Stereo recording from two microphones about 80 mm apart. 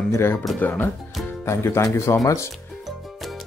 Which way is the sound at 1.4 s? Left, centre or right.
Left.